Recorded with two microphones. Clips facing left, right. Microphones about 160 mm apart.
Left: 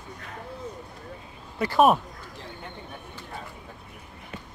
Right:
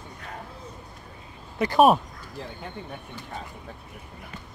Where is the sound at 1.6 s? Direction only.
20° right (ahead or behind).